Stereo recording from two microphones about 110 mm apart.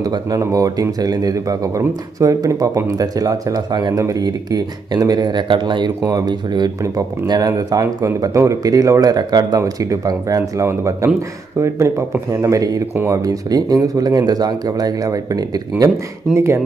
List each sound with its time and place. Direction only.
0.0 s speech: 35° right (ahead or behind)
12.9 s speech: 20° right (ahead or behind)
13.2 s speech: 35° right (ahead or behind)
16.3 s speech: 25° right (ahead or behind)